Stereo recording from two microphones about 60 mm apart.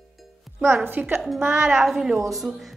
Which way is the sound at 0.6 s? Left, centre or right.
Right.